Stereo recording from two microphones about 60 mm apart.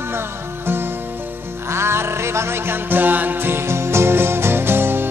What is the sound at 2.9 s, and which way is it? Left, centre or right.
Music, right.